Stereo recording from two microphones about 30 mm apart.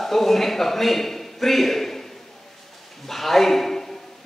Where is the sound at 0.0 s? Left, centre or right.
Centre.